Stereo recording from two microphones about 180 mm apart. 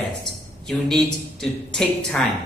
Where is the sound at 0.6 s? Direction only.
5° left (ahead or behind).